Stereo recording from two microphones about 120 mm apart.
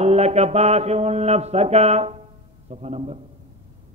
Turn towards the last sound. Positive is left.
turn(degrees=-65)  # may be behind; listen again after turning